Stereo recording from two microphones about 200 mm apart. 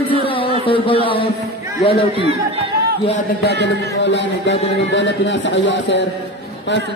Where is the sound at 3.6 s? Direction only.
60° left (ahead or behind).